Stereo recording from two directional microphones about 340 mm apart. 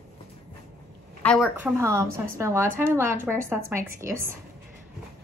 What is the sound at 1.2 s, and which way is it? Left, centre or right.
A woman's voice, centre.